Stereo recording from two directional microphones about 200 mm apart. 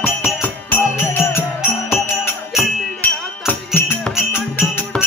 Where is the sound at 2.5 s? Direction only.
5° left (ahead or behind).